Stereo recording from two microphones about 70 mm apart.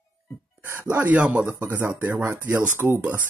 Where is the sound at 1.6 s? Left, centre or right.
Right.